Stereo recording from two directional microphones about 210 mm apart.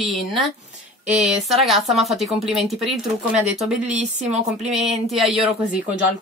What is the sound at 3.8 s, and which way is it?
Speech, 35° right (ahead or behind).